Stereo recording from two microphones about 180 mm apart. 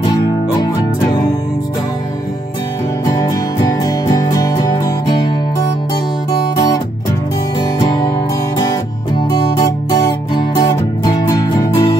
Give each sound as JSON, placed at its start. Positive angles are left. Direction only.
{"t": 3.1, "sound": "music", "side_deg": 20}
{"t": 9.6, "sound": "music", "side_deg": 20}